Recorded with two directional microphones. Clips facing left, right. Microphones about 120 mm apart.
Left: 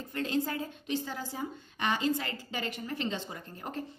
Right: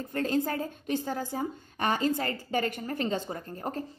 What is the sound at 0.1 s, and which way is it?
A woman's voice, 45° right (ahead or behind).